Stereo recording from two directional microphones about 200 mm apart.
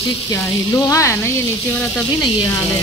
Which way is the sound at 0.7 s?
15° left (ahead or behind).